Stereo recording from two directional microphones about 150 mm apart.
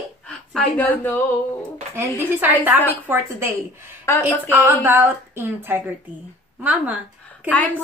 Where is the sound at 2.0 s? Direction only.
15° right (ahead or behind).